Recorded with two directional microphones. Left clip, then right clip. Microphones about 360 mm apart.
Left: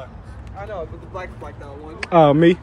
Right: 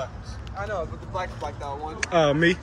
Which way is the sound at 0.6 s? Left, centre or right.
Right.